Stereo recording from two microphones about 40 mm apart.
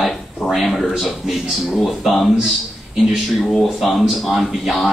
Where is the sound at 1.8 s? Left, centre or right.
Centre.